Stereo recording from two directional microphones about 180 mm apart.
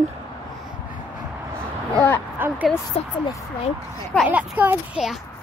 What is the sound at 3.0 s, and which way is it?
Speech, 35° left (ahead or behind).